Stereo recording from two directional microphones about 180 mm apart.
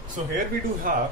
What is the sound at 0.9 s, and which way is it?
Speech, 50° right (ahead or behind).